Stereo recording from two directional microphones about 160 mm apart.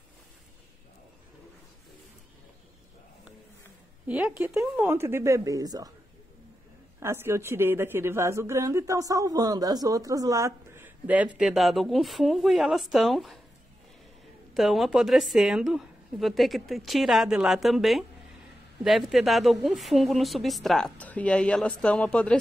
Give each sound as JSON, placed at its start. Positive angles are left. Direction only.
{"t": 4.1, "sound": "a woman's voice", "side_deg": -10}
{"t": 7.0, "sound": "a woman's voice", "side_deg": -15}
{"t": 14.5, "sound": "a woman's voice", "side_deg": 0}